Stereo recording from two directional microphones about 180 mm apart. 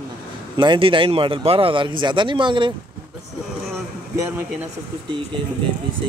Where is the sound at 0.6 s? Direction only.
30° right (ahead or behind).